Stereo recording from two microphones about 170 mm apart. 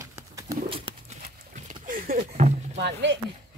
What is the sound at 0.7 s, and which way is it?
Horse, 30° right (ahead or behind).